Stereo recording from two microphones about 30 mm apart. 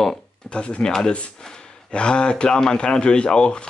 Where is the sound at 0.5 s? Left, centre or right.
Left.